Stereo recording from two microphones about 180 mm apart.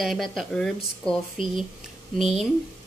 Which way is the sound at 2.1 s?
Centre (ahead or behind).